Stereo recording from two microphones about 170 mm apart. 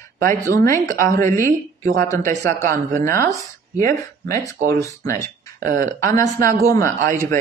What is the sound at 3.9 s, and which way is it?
A woman's voice, 15° left (ahead or behind).